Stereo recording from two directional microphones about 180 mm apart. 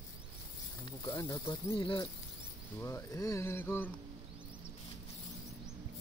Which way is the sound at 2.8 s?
15° left (ahead or behind).